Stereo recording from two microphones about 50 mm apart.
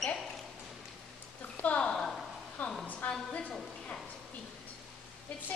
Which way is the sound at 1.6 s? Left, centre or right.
Left.